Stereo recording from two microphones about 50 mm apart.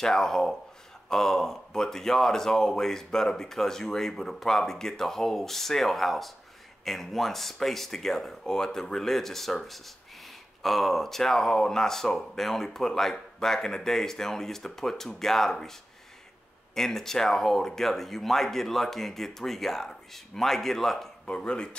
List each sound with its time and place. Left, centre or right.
0.0 s speech: centre
16.7 s speech: centre
21.3 s speech: centre